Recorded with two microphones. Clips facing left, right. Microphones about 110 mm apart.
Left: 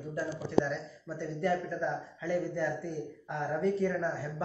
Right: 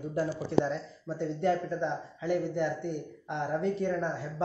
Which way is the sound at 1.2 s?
25° right (ahead or behind).